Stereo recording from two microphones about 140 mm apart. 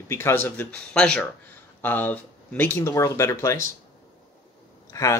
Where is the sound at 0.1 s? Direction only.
20° left (ahead or behind).